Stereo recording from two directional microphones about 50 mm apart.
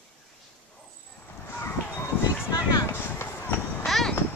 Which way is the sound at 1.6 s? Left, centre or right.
Left.